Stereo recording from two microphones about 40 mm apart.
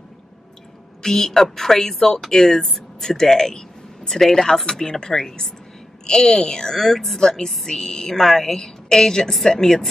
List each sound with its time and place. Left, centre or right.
1.0 s speech: centre